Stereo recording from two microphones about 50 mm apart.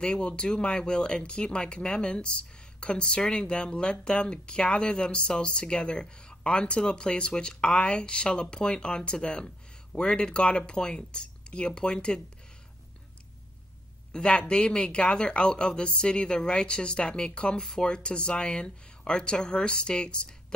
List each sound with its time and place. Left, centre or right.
0.0 s speech: centre
14.1 s speech: centre